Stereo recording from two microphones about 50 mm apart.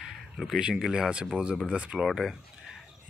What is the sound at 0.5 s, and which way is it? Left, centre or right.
Speech, centre.